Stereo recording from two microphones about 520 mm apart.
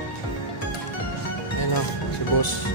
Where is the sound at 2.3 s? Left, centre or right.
Left.